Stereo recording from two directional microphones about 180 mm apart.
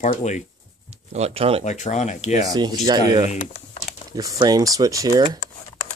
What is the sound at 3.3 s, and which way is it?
Speech, 40° left (ahead or behind).